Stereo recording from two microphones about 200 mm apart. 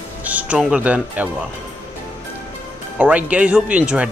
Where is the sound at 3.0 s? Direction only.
5° right (ahead or behind).